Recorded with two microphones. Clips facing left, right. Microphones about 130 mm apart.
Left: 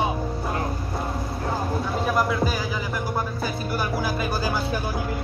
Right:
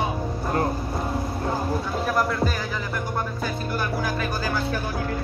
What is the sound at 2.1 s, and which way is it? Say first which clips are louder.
Music: even; 5° left (ahead or behind).